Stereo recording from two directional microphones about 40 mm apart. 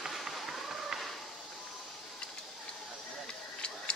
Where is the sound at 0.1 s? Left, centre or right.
Centre.